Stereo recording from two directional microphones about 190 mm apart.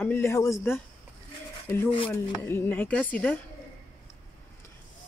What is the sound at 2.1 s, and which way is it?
A woman's voice, 10° left (ahead or behind).